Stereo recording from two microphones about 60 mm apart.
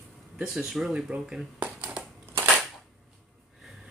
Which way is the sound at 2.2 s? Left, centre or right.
Right.